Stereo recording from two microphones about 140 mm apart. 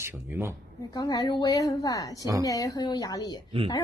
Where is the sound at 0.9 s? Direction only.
30° left (ahead or behind).